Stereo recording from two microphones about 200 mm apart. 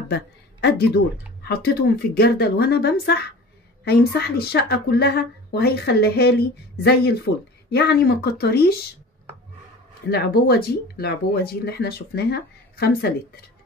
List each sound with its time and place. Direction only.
0.1 s a woman's voice: 55° left (ahead or behind)
10.0 s a woman's voice: 50° left (ahead or behind)